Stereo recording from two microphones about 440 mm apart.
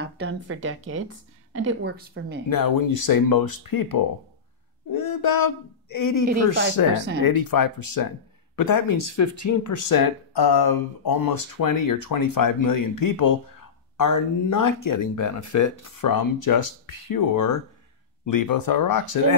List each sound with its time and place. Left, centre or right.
0.0 s speech: right
2.5 s speech: left